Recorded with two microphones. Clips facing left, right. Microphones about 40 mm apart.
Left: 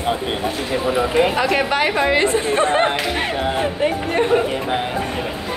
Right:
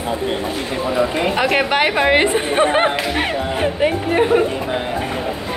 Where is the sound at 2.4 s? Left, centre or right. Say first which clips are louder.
Right 1 dB; right.